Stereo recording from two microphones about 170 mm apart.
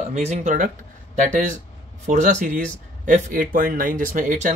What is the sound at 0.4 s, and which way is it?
Speech, 50° right (ahead or behind).